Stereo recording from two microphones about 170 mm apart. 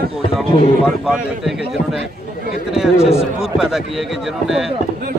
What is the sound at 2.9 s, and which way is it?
Speech, 35° left (ahead or behind).